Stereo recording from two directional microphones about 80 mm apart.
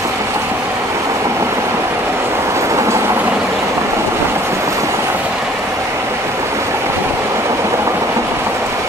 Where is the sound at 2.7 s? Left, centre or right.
Right.